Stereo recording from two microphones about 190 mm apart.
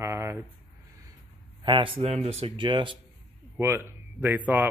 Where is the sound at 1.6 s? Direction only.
25° right (ahead or behind).